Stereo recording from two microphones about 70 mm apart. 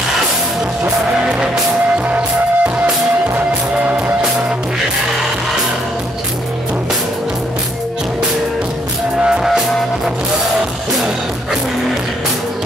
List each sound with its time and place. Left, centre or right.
1.3 s music: centre
9.2 s music: centre